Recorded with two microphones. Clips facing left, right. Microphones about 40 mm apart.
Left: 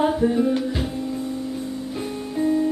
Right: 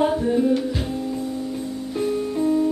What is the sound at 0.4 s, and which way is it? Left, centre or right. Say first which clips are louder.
Music: right 1 dB; centre.